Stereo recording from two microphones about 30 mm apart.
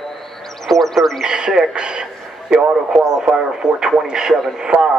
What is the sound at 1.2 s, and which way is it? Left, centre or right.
A man's voice, right.